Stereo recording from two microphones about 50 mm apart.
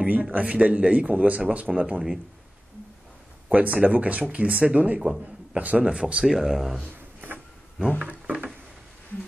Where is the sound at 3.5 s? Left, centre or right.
Right.